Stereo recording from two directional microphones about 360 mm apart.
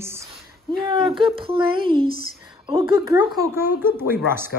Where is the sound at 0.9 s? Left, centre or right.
Centre.